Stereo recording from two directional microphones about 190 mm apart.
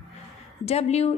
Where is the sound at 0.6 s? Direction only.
35° left (ahead or behind).